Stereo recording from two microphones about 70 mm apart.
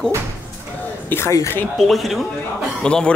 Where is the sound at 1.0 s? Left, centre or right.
Left.